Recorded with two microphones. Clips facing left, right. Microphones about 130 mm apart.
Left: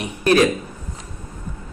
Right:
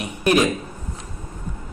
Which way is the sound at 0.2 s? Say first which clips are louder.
Left 2 dB; 15° right (ahead or behind).